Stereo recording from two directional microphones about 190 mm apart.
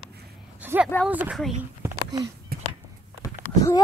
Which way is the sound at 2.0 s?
20° right (ahead or behind).